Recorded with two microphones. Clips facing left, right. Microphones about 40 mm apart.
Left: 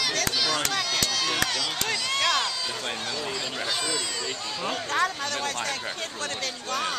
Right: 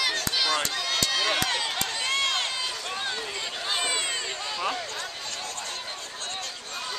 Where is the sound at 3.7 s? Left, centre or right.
Right.